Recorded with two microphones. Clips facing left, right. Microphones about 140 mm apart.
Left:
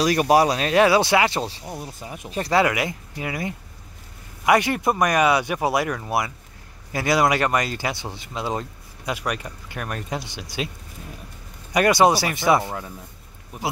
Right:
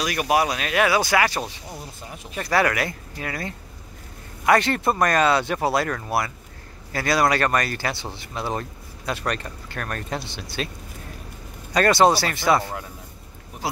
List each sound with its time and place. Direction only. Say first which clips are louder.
0.0 s speech: left 4 dB; 35° left (ahead or behind); by 10.4 s 15° left (ahead or behind)
11.7 s speech: even; 15° left (ahead or behind)